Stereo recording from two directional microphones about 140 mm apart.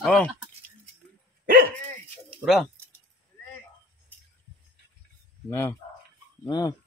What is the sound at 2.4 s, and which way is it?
Speech, 5° right (ahead or behind).